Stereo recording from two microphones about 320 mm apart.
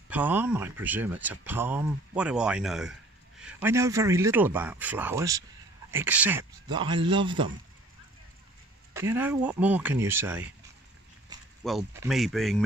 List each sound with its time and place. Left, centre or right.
0.1 s speech: centre
8.9 s speech: centre
11.6 s speech: centre